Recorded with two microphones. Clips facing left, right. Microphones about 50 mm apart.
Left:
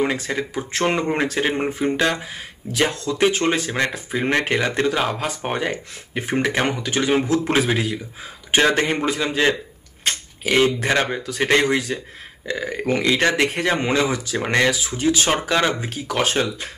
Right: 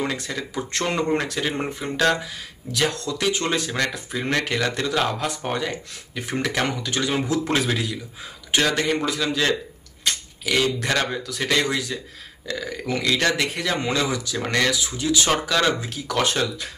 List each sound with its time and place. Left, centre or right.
0.0 s speech: left
5.4 s speech: left